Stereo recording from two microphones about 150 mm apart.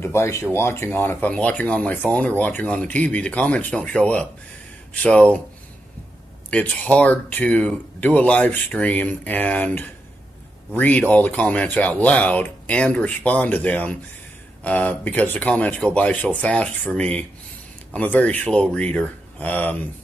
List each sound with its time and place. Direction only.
0.0 s speech: 15° left (ahead or behind)
6.5 s speech: 10° left (ahead or behind)